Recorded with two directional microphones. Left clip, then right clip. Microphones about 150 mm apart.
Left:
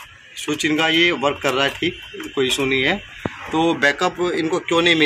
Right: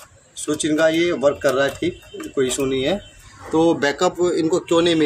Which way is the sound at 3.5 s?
25° right (ahead or behind).